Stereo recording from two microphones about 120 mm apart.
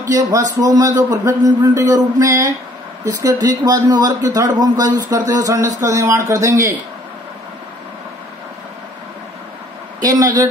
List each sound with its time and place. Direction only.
0.1 s a man's voice: 30° right (ahead or behind)
10.0 s speech: 30° right (ahead or behind)